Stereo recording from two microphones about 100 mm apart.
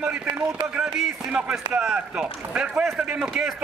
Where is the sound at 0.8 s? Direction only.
5° right (ahead or behind).